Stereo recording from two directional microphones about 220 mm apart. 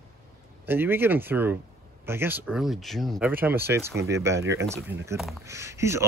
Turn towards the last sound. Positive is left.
turn(degrees=-15)  # may be behind; listen again after turning